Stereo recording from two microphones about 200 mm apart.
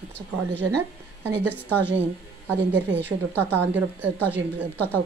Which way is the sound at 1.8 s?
60° right (ahead or behind).